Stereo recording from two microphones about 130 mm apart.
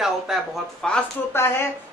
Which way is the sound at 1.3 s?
20° left (ahead or behind).